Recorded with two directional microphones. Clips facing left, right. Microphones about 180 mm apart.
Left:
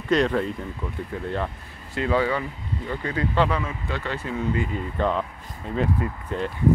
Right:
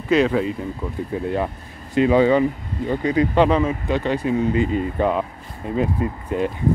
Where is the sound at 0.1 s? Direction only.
5° right (ahead or behind).